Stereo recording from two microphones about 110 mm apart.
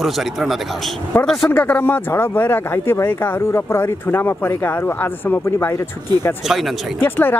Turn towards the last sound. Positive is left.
turn(degrees=20)  # may be behind; listen again after turning